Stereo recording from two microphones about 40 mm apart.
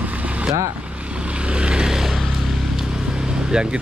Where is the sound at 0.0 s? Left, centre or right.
Right; by 2.1 s centre.